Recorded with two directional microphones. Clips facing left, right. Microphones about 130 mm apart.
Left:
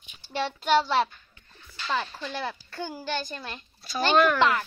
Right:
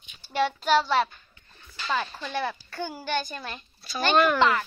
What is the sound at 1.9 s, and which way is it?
A child's voice, 5° right (ahead or behind).